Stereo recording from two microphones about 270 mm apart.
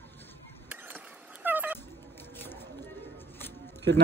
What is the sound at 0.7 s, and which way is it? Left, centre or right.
Mechanisms, centre.